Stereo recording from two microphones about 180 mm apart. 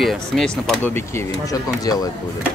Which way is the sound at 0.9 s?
15° left (ahead or behind).